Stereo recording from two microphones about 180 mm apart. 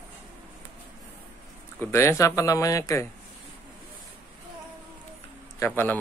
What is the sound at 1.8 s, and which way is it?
Speech, 15° left (ahead or behind).